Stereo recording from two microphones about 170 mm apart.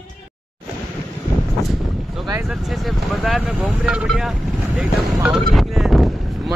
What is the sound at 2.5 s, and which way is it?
Speech, centre (ahead or behind).